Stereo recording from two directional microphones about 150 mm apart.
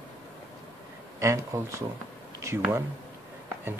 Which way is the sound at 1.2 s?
20° right (ahead or behind).